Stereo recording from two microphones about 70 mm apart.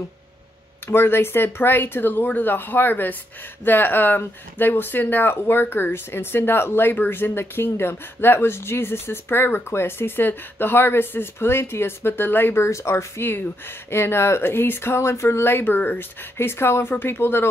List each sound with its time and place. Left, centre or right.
0.8 s speech: left
12.6 s speech: left